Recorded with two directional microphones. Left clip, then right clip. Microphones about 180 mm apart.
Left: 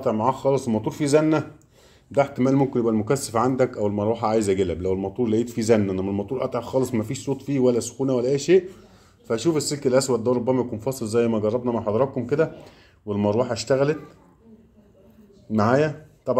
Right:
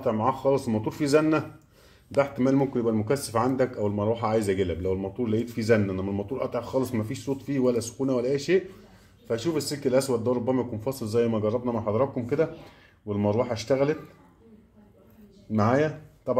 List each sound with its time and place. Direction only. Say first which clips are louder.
0.0 s speech: left 3 dB; 10° left (ahead or behind)
15.5 s speech: left 4 dB; 10° left (ahead or behind)